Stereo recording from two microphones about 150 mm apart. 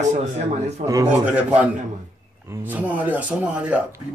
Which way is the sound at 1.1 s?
10° right (ahead or behind).